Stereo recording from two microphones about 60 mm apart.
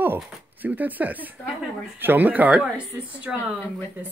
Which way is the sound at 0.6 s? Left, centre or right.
Right.